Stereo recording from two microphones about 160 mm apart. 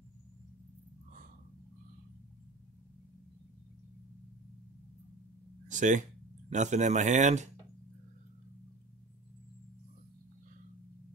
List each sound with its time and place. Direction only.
5.7 s speech: 50° right (ahead or behind)